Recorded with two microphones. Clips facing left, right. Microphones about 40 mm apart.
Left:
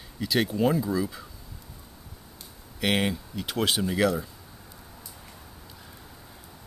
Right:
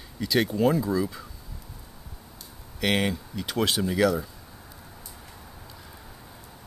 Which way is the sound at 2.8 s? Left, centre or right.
Centre.